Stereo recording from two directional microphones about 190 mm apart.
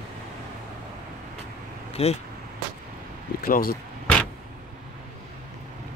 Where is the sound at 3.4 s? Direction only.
50° left (ahead or behind).